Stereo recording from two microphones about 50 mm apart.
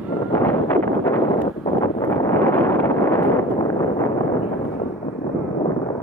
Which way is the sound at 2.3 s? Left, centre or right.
Left.